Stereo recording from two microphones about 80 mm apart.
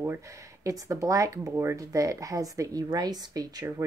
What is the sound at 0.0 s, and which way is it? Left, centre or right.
Speech, right.